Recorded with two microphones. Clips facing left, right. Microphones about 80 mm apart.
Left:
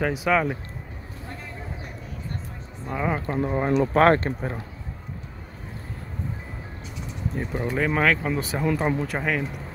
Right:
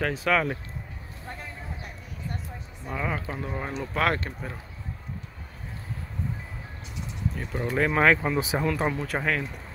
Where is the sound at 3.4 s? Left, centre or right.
Left.